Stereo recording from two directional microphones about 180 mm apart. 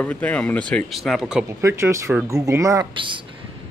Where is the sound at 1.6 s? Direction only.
15° right (ahead or behind).